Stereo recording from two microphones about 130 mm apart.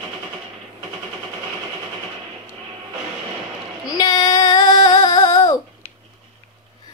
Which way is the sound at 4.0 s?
30° left (ahead or behind).